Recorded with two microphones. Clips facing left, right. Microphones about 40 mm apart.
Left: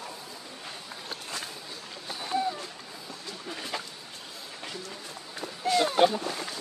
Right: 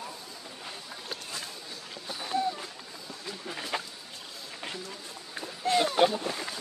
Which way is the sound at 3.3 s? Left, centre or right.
Centre.